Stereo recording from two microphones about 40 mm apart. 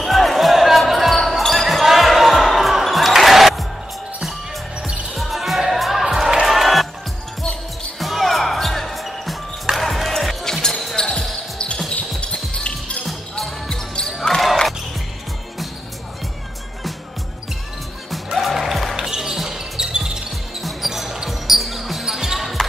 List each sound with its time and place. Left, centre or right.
0.0 s basketball bounce: centre
5.1 s basketball bounce: centre
5.6 s music: centre
8.0 s basketball bounce: centre
9.8 s music: centre
11.0 s basketball bounce: centre
12.2 s music: left
13.7 s basketball bounce: centre
18.1 s music: centre
18.9 s basketball bounce: centre